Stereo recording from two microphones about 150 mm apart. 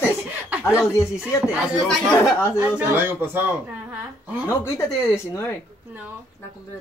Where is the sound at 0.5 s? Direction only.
10° right (ahead or behind).